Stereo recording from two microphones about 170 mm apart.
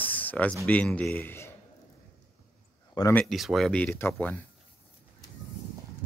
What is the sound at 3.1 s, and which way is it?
Speech, centre (ahead or behind).